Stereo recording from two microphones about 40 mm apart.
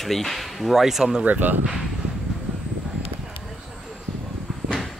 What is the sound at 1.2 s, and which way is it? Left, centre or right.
Speech, right.